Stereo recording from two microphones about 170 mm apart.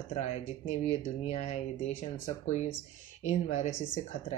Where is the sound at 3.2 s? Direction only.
45° left (ahead or behind).